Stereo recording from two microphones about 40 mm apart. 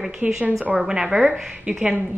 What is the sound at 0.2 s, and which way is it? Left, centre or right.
Speech, right.